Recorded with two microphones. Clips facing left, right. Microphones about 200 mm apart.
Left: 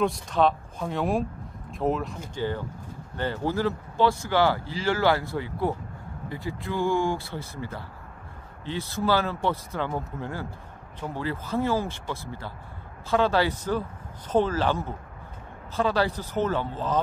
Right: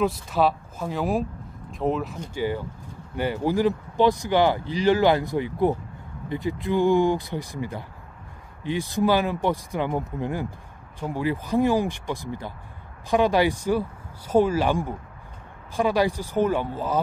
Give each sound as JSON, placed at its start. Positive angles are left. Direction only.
{"t": 0.0, "sound": "speech", "side_deg": -5}